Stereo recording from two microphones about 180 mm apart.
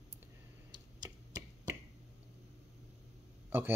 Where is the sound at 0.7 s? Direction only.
20° right (ahead or behind).